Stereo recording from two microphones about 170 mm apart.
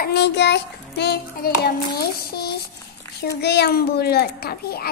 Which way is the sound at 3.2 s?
75° left (ahead or behind).